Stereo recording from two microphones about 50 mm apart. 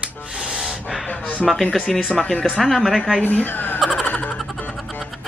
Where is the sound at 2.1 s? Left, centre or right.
Centre.